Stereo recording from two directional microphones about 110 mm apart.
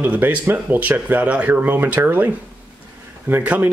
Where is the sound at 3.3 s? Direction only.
15° right (ahead or behind).